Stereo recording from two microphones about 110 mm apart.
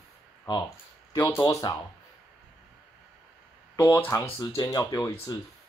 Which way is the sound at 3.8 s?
20° left (ahead or behind).